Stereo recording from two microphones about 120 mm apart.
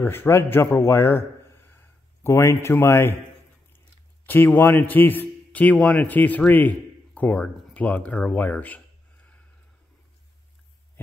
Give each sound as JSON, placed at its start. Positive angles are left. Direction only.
{"t": 0.0, "sound": "speech", "side_deg": 20}
{"t": 0.7, "sound": "a sound", "side_deg": 20}
{"t": 2.2, "sound": "speech", "side_deg": 25}
{"t": 4.3, "sound": "a man's voice", "side_deg": 15}